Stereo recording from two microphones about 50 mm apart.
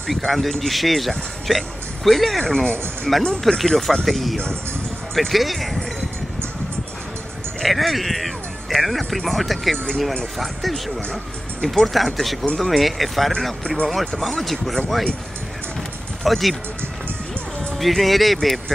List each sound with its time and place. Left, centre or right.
0.1 s speech: centre
2.4 s speech: centre
7.6 s speech: centre
11.9 s speech: centre
16.3 s speech: centre
17.7 s speech: centre